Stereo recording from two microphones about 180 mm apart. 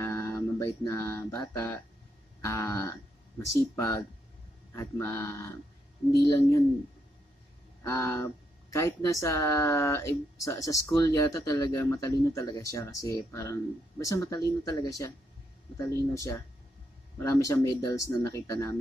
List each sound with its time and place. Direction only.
0.0 s music: 15° left (ahead or behind)
2.4 s speech: 15° left (ahead or behind)
7.8 s speech: 15° left (ahead or behind)